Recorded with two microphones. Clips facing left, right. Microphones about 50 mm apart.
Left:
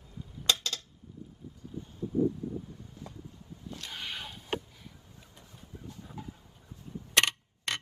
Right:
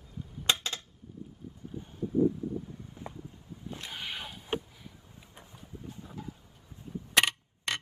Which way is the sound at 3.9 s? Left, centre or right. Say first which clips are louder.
Even; centre.